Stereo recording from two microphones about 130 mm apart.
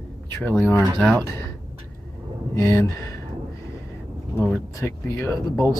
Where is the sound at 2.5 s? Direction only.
20° left (ahead or behind).